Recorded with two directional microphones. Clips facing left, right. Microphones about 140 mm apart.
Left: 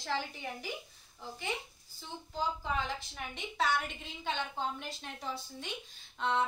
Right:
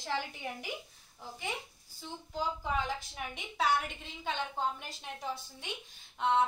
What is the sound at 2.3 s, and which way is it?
A woman's voice, 10° right (ahead or behind).